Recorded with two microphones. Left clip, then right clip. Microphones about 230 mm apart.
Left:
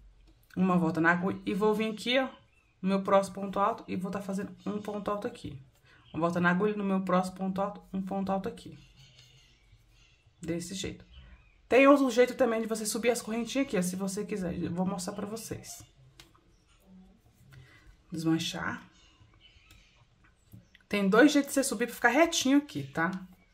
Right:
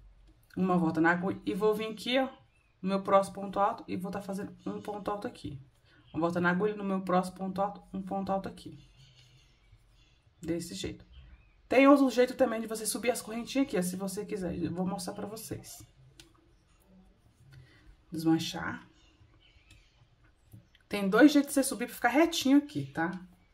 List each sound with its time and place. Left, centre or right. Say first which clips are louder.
0.5 s speech: even; centre
10.4 s speech: even; centre
18.1 s speech: right 1 dB; centre
20.9 s speech: even; centre